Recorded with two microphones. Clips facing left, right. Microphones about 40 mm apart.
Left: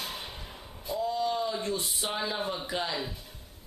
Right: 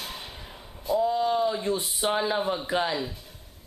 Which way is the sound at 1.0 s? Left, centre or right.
Centre.